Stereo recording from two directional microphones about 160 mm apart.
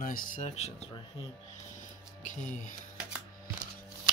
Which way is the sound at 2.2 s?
55° left (ahead or behind).